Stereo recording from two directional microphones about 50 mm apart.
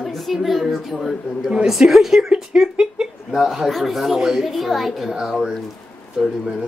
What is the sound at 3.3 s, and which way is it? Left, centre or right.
A woman's voice, centre.